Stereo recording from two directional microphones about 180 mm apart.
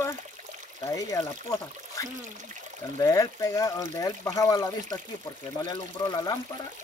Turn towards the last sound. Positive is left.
turn(degrees=20)  # may be behind; listen again after turning